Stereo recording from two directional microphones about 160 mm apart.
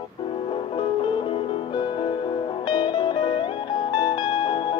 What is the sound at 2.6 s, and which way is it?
Music, 30° left (ahead or behind).